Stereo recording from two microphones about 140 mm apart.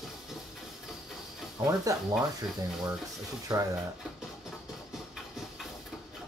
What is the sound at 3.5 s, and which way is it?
Speech, 30° right (ahead or behind).